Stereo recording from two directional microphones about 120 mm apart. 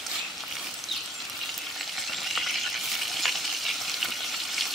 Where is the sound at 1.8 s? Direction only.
Centre (ahead or behind).